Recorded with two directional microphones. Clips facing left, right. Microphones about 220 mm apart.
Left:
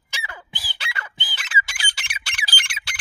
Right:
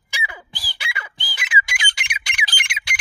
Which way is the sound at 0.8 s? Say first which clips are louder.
Right 1 dB; 10° right (ahead or behind).